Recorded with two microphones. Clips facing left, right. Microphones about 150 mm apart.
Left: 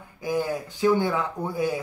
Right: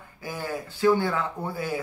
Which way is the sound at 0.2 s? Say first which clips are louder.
Left 6 dB; 15° left (ahead or behind).